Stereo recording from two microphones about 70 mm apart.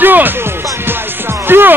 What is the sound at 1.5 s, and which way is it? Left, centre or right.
Speech, right.